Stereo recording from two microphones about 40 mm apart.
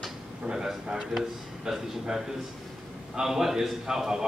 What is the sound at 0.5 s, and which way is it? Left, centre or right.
A man's voice, centre.